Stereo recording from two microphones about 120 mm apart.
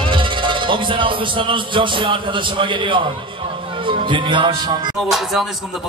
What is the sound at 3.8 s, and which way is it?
Speech, 45° right (ahead or behind).